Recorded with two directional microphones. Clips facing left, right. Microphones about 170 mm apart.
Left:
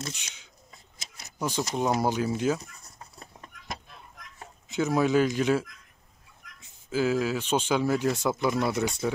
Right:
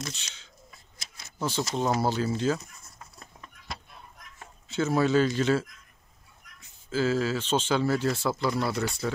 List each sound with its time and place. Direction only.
0.1 s speech: 15° left (ahead or behind)
2.8 s chicken: 35° left (ahead or behind)
4.6 s speech: 15° left (ahead or behind)